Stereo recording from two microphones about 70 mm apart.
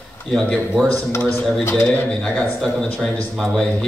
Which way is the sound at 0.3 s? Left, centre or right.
Centre.